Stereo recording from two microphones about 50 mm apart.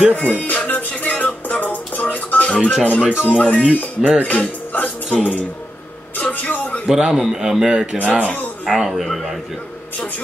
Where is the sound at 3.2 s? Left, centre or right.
Left.